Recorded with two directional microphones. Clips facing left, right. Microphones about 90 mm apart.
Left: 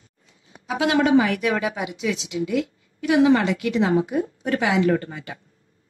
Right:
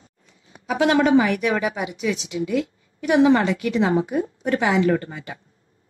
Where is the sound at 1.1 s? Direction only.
30° right (ahead or behind).